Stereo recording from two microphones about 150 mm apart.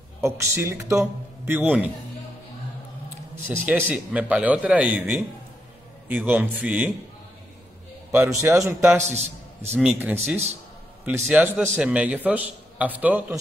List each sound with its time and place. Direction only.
0.2 s a man's voice: 20° right (ahead or behind)
3.4 s a man's voice: 10° right (ahead or behind)
8.1 s a man's voice: 15° right (ahead or behind)
9.1 s a man's voice: 45° right (ahead or behind)
9.8 s a man's voice: 10° right (ahead or behind)